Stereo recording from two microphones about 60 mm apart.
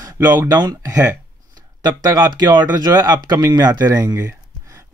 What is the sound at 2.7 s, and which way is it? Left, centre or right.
Speech, right.